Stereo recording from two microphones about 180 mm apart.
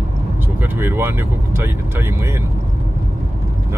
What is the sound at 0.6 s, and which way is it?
Speech, 10° right (ahead or behind).